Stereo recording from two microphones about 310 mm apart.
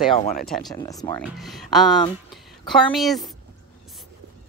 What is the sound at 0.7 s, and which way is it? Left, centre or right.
Speech, centre.